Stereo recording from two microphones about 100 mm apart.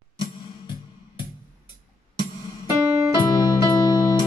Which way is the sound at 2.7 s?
30° right (ahead or behind).